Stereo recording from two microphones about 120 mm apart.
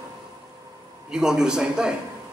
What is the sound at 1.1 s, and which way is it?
Speech, 5° right (ahead or behind).